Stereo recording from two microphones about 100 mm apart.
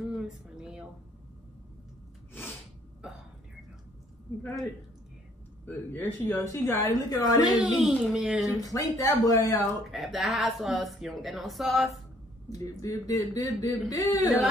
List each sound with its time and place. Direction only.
0.1 s a sound: 5° right (ahead or behind)
5.7 s a woman's voice: 20° left (ahead or behind); by 7.4 s 35° left (ahead or behind)
7.5 s speech: 5° right (ahead or behind)
8.5 s speech: 35° left (ahead or behind)
9.8 s speech: centre (ahead or behind)
12.4 s speech: 35° left (ahead or behind)